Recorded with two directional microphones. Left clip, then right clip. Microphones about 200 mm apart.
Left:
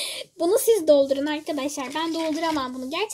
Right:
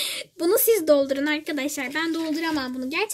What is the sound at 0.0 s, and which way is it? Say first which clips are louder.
A woman's voice: even; 25° right (ahead or behind).